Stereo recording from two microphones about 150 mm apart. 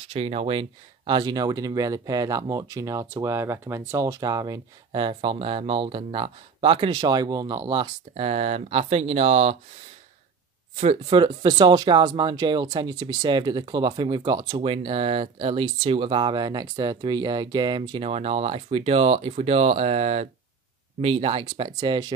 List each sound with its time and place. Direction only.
0.1 s speech: 40° right (ahead or behind)
10.8 s speech: 40° right (ahead or behind)
14.6 s speech: 35° right (ahead or behind)